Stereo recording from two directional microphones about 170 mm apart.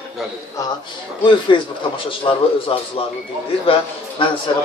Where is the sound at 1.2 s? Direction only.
30° left (ahead or behind).